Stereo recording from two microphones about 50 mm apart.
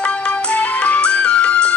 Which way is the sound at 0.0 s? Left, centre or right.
Left.